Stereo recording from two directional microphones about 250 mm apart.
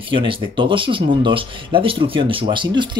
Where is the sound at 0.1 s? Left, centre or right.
Centre.